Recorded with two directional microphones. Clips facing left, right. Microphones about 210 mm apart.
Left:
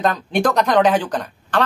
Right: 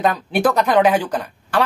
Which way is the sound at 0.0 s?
10° right (ahead or behind).